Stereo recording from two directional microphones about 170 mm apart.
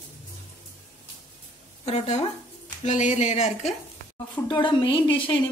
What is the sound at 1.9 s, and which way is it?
Speech, 40° left (ahead or behind).